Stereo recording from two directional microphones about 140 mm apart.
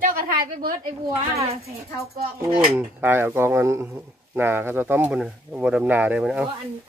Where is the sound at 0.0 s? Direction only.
90° right.